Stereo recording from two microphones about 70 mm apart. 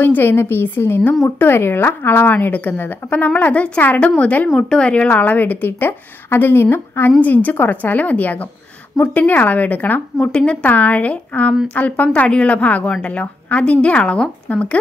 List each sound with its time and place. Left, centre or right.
0.0 s a woman's voice: left; by 5.1 s centre
5.1 s a woman's voice: left